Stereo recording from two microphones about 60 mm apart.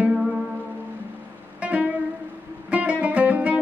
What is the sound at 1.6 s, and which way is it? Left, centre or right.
Music, right.